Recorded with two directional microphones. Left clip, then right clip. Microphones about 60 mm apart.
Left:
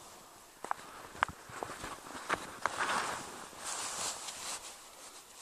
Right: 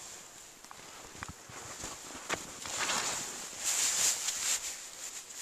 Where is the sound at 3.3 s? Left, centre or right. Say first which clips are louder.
Right 6 dB; centre.